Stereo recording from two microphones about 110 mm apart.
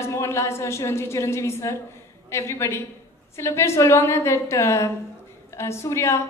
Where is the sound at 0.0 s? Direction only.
25° left (ahead or behind).